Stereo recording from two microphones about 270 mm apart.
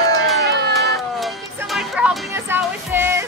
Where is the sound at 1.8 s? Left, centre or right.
Centre.